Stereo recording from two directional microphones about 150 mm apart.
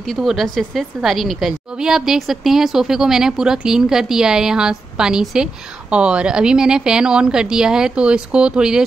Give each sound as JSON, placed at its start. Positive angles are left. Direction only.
{"t": 0.0, "sound": "a woman's voice", "side_deg": 0}